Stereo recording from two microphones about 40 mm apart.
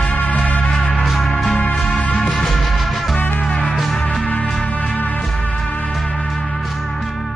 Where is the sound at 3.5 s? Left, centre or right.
Left.